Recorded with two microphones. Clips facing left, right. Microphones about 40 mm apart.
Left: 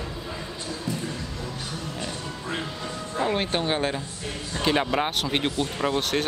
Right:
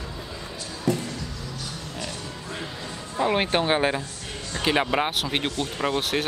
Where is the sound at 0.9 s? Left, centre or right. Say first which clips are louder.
Right 8 dB; right.